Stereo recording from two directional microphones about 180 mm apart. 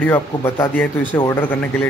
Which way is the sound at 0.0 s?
15° left (ahead or behind).